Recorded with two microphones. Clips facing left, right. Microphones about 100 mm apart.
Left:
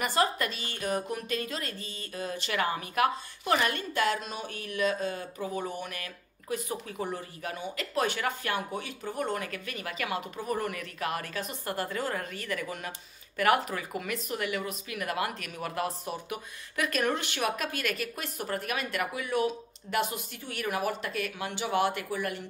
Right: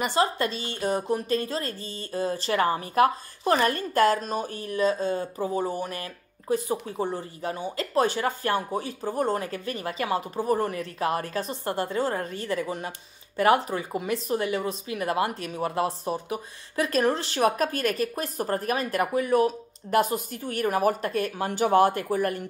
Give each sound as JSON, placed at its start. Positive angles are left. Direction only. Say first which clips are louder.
{"t": 0.0, "sound": "speech", "louder": "right 3 dB", "side_deg": -25}